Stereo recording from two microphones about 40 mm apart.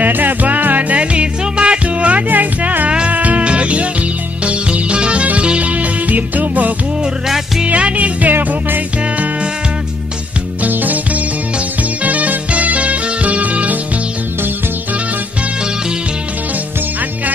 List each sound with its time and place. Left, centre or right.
0.0 s music: right
2.2 s music: right
7.2 s music: centre
7.6 s music: right
10.7 s music: right